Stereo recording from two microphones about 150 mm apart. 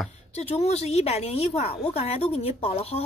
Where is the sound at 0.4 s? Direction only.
45° left (ahead or behind).